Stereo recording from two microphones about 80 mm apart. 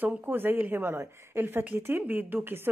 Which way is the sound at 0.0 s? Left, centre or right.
Right.